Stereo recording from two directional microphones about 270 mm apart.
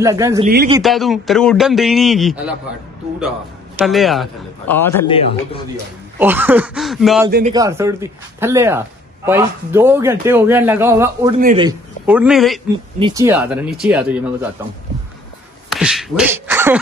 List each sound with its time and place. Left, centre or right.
0.0 s a man's voice: centre
0.8 s a man's voice: centre
3.7 s a man's voice: centre
5.0 s a man's voice: centre
6.1 s a man's voice: centre
7.2 s a man's voice: right
7.5 s a man's voice: centre
12.1 s a man's voice: centre
13.0 s a man's voice: centre
15.7 s a man's voice: centre